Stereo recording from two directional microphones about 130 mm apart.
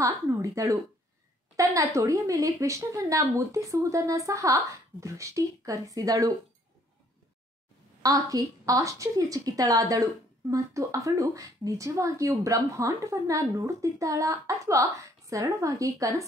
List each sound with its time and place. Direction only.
0.0 s speech: 25° right (ahead or behind)
8.0 s speech: 25° right (ahead or behind)